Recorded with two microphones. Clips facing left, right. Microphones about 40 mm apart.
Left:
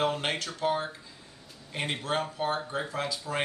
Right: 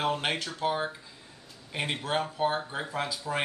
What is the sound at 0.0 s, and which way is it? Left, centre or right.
Speech, centre.